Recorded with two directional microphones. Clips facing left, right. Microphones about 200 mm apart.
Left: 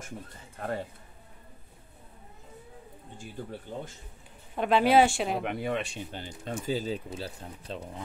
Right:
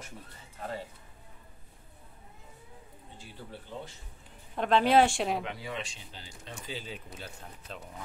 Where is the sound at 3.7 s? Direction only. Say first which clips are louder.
Left 2 dB; 45° left (ahead or behind).